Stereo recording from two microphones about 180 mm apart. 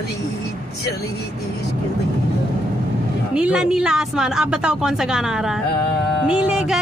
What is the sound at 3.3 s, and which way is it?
A woman's voice, 5° right (ahead or behind).